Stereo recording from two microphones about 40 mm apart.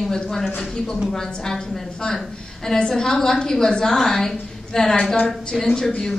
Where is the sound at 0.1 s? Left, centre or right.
Centre.